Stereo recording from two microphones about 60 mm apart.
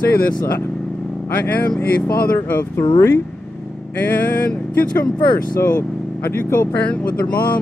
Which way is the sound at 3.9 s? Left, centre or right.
Left.